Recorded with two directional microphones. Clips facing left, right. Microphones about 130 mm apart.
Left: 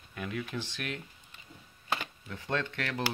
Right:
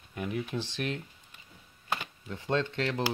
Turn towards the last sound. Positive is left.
turn(degrees=-25)  # may be behind; listen again after turning